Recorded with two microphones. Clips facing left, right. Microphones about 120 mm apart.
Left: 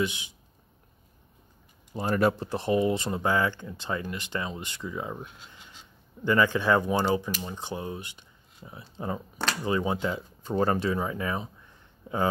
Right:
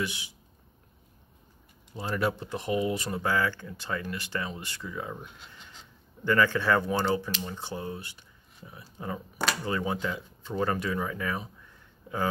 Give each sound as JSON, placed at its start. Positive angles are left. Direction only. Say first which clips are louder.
{"t": 0.0, "sound": "speech", "louder": "left 4 dB", "side_deg": 20}
{"t": 2.0, "sound": "speech", "louder": "left 5 dB", "side_deg": 45}
{"t": 6.2, "sound": "speech", "louder": "left 1 dB", "side_deg": 15}
{"t": 10.4, "sound": "speech", "louder": "left 4 dB", "side_deg": 40}